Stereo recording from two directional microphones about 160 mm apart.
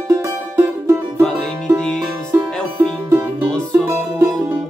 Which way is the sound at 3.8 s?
10° right (ahead or behind).